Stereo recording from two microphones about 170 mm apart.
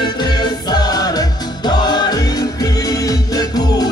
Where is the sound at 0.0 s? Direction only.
25° left (ahead or behind).